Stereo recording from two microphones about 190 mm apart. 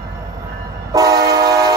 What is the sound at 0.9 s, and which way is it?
Train, 20° right (ahead or behind).